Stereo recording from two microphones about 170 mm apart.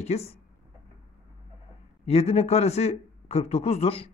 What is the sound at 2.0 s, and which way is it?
Speech, 35° left (ahead or behind).